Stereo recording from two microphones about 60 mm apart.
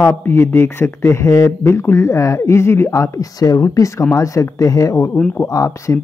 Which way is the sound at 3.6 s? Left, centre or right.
Left.